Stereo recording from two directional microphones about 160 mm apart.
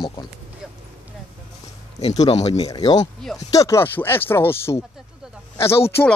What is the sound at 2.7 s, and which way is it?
Speech, 25° left (ahead or behind).